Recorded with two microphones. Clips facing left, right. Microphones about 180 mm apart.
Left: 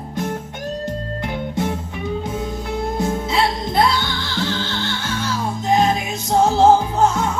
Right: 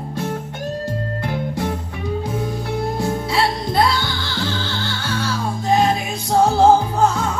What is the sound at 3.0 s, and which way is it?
Music, 20° left (ahead or behind).